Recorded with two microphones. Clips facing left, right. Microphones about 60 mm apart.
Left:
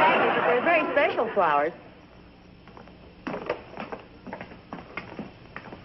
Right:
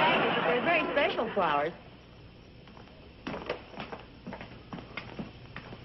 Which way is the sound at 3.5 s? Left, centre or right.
Left.